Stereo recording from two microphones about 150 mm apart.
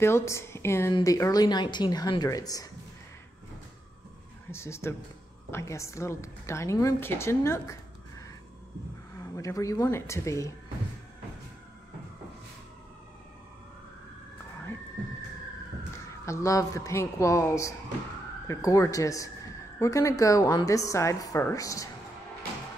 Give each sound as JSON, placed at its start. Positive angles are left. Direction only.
{"t": 0.0, "sound": "a woman's voice", "side_deg": 20}
{"t": 4.5, "sound": "a woman's voice", "side_deg": 15}
{"t": 9.2, "sound": "a woman's voice", "side_deg": 20}
{"t": 16.3, "sound": "a woman's voice", "side_deg": 20}